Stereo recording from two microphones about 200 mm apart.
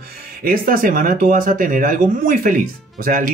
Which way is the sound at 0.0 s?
45° right (ahead or behind).